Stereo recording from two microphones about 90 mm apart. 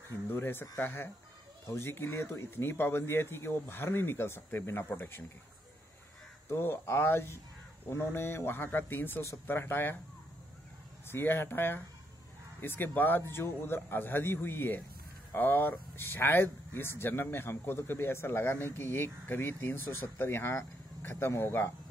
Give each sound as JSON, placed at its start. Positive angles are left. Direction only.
{"t": 0.3, "sound": "speech", "side_deg": 25}
{"t": 6.5, "sound": "speech", "side_deg": 25}
{"t": 11.1, "sound": "speech", "side_deg": 25}